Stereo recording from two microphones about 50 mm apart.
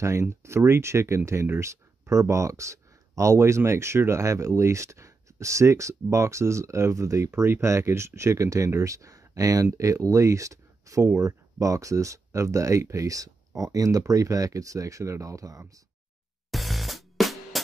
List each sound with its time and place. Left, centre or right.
0.0 s speech: right
8.2 s speech: right
16.4 s music: centre